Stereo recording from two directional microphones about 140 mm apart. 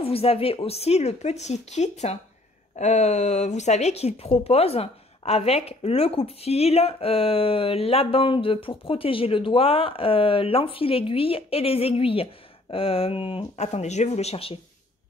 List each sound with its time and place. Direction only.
0.0 s speech: 45° left (ahead or behind)